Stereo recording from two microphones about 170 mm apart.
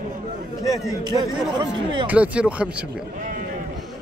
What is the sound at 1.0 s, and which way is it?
Speech, 25° right (ahead or behind).